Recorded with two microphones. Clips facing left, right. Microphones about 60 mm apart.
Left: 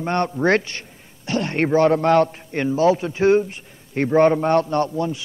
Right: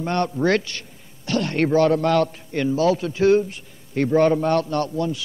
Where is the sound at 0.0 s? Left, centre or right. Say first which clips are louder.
Left 1 dB; left.